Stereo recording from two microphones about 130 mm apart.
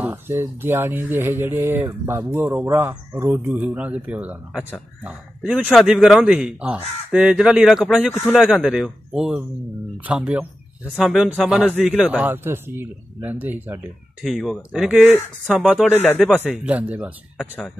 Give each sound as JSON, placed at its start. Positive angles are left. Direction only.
{"t": 0.0, "sound": "a man's voice", "side_deg": -20}
{"t": 14.2, "sound": "a man's voice", "side_deg": 0}
{"t": 15.8, "sound": "speech", "side_deg": 10}
{"t": 16.6, "sound": "speech", "side_deg": -10}
{"t": 17.4, "sound": "a man's voice", "side_deg": 0}